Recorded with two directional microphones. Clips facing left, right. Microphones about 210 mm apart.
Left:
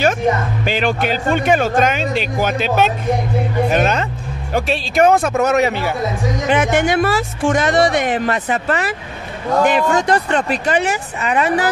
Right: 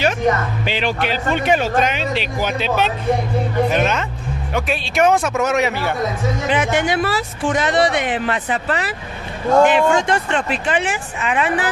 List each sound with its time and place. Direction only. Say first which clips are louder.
0.7 s speech: left 4 dB; 45° left (ahead or behind)
6.5 s speech: left 4 dB; 50° left (ahead or behind)